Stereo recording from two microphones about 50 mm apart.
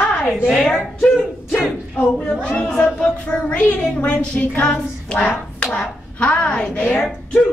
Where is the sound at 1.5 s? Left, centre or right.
Left.